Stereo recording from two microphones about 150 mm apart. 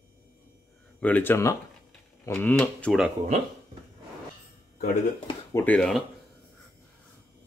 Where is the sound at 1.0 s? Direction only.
10° left (ahead or behind).